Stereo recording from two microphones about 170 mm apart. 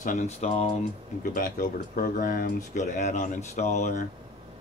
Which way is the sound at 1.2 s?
55° left (ahead or behind).